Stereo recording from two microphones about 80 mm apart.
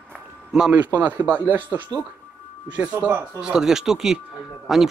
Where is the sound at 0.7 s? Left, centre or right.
Right.